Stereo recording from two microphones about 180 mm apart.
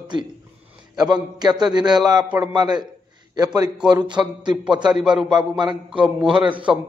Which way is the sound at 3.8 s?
25° right (ahead or behind).